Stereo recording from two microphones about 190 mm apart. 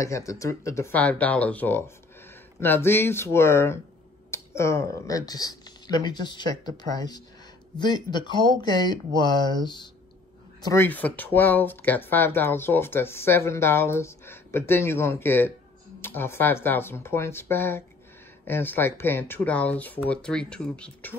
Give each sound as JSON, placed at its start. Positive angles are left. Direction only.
{"t": 0.0, "sound": "speech", "side_deg": 15}